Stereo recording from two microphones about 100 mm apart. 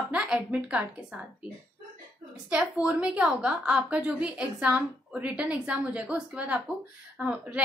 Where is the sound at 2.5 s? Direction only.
10° right (ahead or behind).